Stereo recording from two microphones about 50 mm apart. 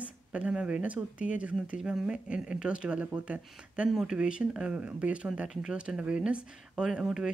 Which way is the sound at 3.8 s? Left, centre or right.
Centre.